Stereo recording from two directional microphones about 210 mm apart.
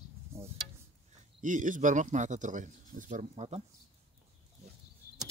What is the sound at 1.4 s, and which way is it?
Speech, 40° right (ahead or behind).